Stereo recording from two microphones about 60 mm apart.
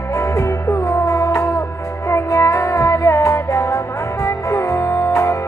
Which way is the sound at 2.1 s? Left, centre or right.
Left.